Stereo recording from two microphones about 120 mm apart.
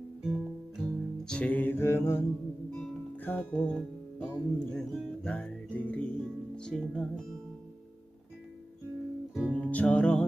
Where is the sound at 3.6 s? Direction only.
5° left (ahead or behind).